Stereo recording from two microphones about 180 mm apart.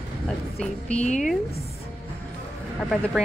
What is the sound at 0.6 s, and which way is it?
Speech, 5° left (ahead or behind).